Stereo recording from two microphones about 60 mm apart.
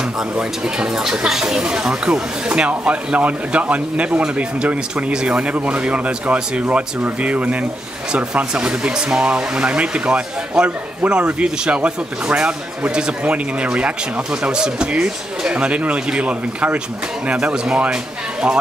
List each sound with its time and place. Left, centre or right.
0.4 s a man's voice: centre